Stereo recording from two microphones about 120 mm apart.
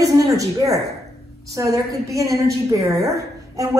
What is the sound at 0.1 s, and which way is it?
A woman's voice, 30° right (ahead or behind).